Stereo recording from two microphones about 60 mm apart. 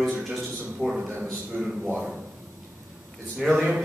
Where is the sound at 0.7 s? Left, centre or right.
Centre.